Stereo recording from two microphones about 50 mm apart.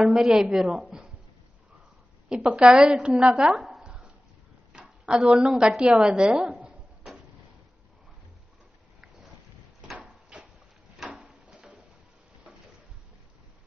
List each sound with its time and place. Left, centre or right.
0.0 s a woman's voice: centre
2.2 s a woman's voice: centre
2.6 s a woman's voice: centre
3.8 s dog: centre
4.7 s speech: centre
6.3 s a woman's voice: centre
10.0 s cupboard open or close: centre
11.5 s a sound: centre